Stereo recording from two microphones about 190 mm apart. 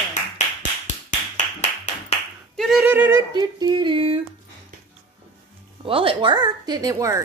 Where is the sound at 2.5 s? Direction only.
Centre (ahead or behind).